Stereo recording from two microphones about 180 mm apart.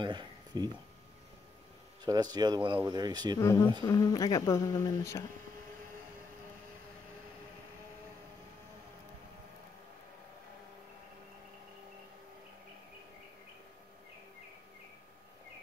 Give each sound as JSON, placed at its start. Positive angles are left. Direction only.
{"t": 0.0, "sound": "speech", "side_deg": -25}
{"t": 2.0, "sound": "speech", "side_deg": -20}
{"t": 3.3, "sound": "speech", "side_deg": 20}